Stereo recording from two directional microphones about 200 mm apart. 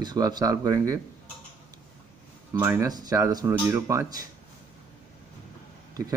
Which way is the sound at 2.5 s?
15° right (ahead or behind).